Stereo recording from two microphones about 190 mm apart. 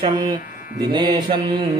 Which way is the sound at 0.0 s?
20° right (ahead or behind).